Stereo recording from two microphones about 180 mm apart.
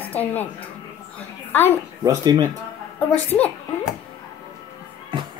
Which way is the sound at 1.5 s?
10° left (ahead or behind).